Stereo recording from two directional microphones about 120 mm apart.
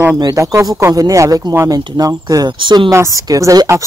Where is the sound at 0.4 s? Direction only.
25° right (ahead or behind).